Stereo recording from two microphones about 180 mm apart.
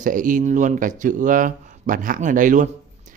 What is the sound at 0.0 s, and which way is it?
A man's voice, 45° right (ahead or behind).